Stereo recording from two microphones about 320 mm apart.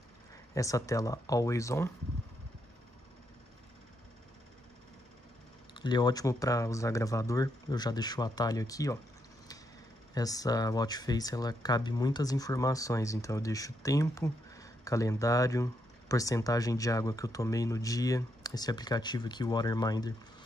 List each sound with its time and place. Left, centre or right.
0.6 s speech: centre
5.8 s speech: centre
10.1 s speech: centre